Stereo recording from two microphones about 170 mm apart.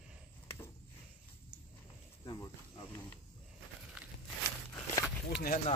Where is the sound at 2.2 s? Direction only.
20° left (ahead or behind).